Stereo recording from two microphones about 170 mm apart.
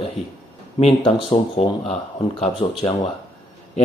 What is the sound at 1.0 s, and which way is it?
Speech, 35° left (ahead or behind).